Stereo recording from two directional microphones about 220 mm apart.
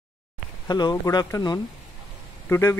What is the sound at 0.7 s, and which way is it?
A man's voice, 20° left (ahead or behind).